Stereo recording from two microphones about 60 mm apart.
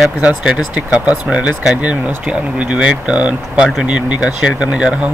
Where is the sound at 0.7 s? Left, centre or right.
Centre.